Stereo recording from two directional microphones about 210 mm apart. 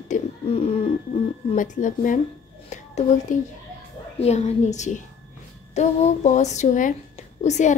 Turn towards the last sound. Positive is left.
turn(degrees=35)  # may be behind; listen again after turning